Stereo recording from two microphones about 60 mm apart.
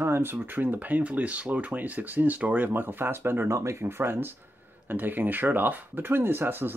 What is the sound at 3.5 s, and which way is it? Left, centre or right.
Speech, right.